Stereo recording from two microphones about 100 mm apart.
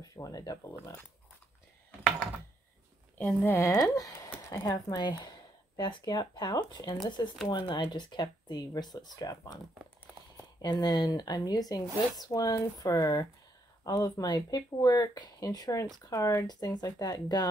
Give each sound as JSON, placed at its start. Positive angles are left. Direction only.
{"t": 0.0, "sound": "speech", "side_deg": 35}
{"t": 1.9, "sound": "a sound", "side_deg": 10}
{"t": 3.2, "sound": "speech", "side_deg": 20}
{"t": 3.9, "sound": "speech", "side_deg": 35}
{"t": 10.8, "sound": "speech", "side_deg": 45}
{"t": 16.4, "sound": "speech", "side_deg": 45}